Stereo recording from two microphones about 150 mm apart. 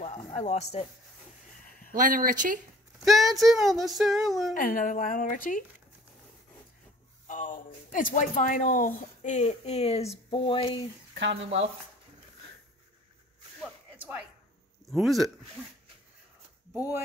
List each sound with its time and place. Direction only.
0.0 s speech: 50° left (ahead or behind)
2.0 s speech: 65° right (ahead or behind)
3.1 s speech: centre (ahead or behind)
4.6 s speech: 65° left (ahead or behind)
7.2 s speech: 60° left (ahead or behind); by 10.8 s 35° left (ahead or behind)
14.9 s speech: centre (ahead or behind)
16.7 s speech: 10° right (ahead or behind)